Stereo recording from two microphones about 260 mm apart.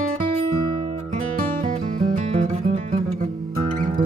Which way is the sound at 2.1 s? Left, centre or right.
Right.